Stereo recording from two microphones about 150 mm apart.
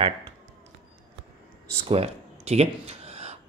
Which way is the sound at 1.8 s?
45° right (ahead or behind).